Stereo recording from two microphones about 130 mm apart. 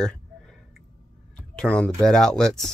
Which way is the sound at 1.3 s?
5° left (ahead or behind).